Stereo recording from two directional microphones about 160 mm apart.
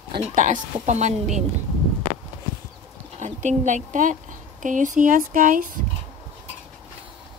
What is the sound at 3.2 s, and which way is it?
A woman's voice, 50° right (ahead or behind).